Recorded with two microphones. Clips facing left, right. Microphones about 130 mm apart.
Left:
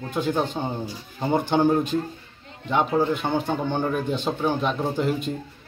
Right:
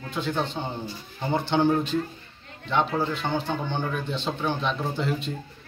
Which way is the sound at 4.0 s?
45° left (ahead or behind).